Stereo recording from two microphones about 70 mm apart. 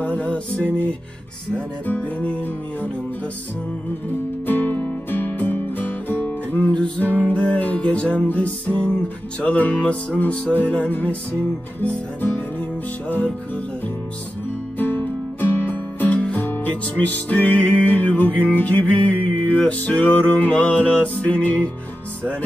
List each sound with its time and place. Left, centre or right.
0.0 s music: centre
1.5 s music: left
4.5 s music: left
14.8 s music: left